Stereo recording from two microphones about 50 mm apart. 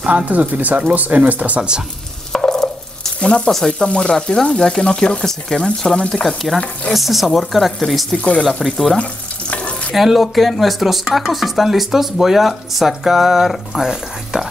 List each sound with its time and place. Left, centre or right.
0.1 s speech: right
2.3 s stir: centre
3.2 s frying: centre
3.5 s speech: centre
3.9 s speech: centre
6.2 s speech: centre
8.2 s speech: left
8.6 s speech: centre
8.9 s stir: left
9.9 s speech: centre